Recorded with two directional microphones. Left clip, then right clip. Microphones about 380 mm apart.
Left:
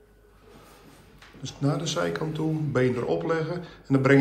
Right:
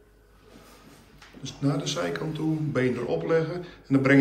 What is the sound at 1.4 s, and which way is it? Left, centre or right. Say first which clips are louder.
A man's voice: even; centre.